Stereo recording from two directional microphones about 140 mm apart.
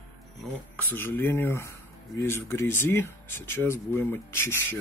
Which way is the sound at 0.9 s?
15° left (ahead or behind).